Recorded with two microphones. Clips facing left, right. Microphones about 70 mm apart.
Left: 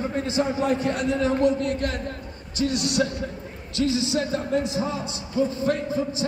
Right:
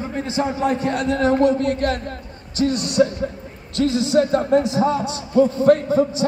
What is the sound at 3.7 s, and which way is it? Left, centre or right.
Speech, right.